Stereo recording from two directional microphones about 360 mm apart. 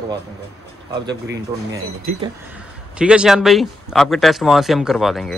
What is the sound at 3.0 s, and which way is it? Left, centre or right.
Speech, centre.